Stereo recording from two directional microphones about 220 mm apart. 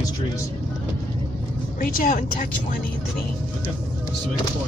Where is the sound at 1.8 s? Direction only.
40° left (ahead or behind).